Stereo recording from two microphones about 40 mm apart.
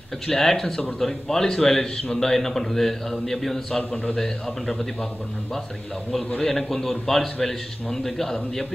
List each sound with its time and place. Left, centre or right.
0.3 s a man's voice: centre
3.9 s a man's voice: left
6.4 s a man's voice: centre